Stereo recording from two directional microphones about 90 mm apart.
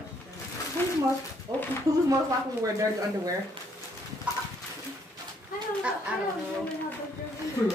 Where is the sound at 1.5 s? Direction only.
45° right (ahead or behind).